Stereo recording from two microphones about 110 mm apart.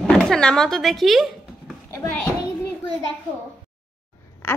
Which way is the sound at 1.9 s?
25° left (ahead or behind).